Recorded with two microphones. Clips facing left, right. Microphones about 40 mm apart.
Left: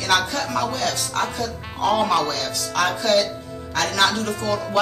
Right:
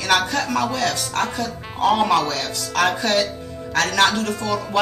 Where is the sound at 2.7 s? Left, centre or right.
Centre.